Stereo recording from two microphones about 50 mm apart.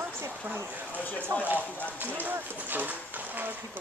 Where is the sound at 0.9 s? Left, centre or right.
Left.